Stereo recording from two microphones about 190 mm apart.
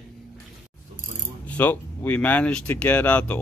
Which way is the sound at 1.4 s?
10° left (ahead or behind).